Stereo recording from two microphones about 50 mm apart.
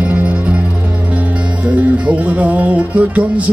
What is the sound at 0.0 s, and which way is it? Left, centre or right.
Music, right.